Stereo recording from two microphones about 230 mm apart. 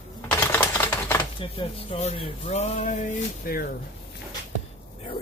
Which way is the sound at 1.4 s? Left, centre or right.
Left.